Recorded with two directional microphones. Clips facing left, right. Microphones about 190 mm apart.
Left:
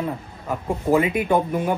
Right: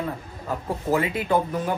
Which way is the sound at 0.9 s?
15° left (ahead or behind).